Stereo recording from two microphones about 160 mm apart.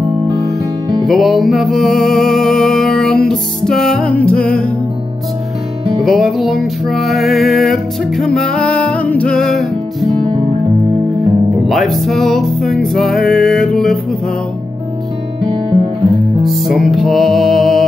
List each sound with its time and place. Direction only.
0.3 s music: centre (ahead or behind)
6.0 s music: centre (ahead or behind)
11.6 s music: centre (ahead or behind)
15.4 s guitar: 30° right (ahead or behind)
16.4 s music: centre (ahead or behind)